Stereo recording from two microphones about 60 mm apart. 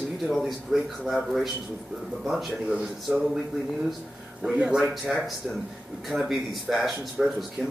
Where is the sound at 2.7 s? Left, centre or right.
Centre.